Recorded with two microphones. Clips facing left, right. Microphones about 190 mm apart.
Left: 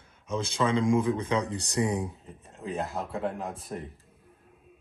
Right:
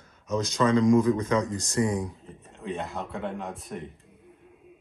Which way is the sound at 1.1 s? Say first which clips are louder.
Right 3 dB; 30° left (ahead or behind).